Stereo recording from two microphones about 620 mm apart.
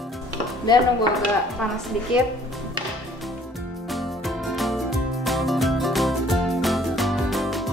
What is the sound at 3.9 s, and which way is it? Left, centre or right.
Music, centre.